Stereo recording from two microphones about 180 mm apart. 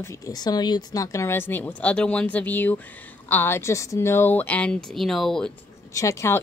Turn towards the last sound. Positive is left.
turn(degrees=15)  # may be behind; listen again after turning